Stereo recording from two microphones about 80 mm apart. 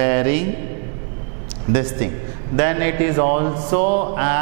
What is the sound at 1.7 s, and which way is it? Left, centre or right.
A man's voice, centre.